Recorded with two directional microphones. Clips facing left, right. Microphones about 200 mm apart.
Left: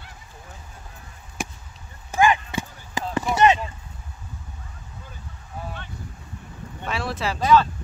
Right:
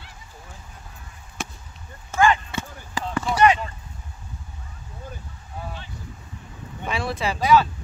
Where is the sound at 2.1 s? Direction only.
15° left (ahead or behind).